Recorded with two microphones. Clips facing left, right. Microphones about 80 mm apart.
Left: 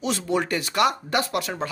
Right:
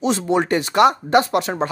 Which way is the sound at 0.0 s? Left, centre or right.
Right.